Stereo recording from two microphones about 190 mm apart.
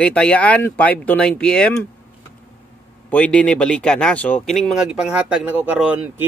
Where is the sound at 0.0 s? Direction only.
5° left (ahead or behind).